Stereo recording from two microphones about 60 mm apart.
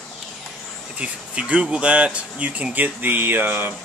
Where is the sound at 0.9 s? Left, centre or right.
Right.